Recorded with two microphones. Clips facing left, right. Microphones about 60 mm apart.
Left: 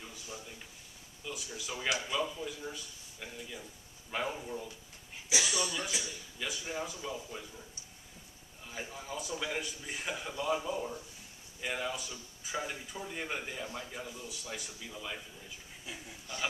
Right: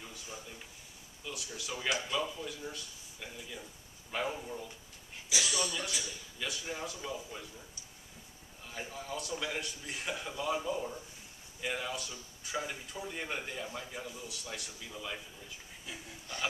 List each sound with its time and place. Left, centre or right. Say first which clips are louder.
1.2 s speech: left 1 dB; centre
5.4 s speech: right 1 dB; centre
6.4 s speech: left 1 dB; centre
8.6 s speech: even; centre